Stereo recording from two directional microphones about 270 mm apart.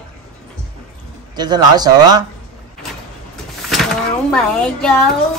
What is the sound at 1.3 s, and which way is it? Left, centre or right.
Speech, centre.